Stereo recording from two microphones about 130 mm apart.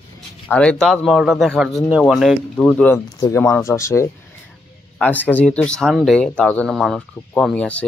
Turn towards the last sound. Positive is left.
turn(degrees=10)  # may be behind; listen again after turning